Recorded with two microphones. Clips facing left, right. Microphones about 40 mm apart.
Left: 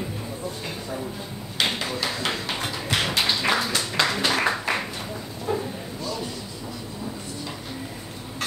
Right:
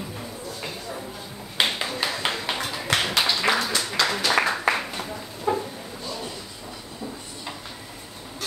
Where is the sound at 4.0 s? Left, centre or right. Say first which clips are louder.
Left 1 dB; left.